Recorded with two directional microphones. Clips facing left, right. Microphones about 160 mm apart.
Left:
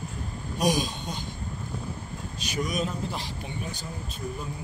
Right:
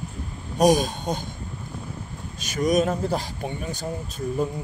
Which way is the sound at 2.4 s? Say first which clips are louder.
Right 8 dB; 45° right (ahead or behind).